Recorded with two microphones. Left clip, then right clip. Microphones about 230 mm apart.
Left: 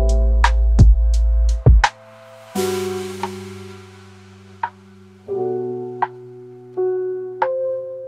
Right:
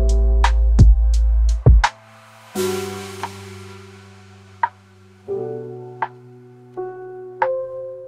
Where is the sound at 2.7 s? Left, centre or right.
Right.